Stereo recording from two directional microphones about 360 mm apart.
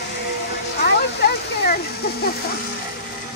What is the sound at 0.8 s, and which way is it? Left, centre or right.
Speech, left.